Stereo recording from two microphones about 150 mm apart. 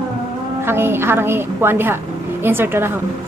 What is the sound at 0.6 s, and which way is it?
A woman's voice, 15° right (ahead or behind).